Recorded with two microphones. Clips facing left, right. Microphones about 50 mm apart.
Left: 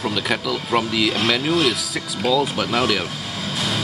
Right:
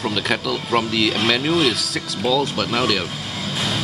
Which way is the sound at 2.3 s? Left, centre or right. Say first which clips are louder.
Left 1 dB; centre.